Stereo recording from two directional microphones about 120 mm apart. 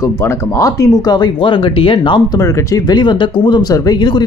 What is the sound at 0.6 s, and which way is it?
Speech, 30° left (ahead or behind).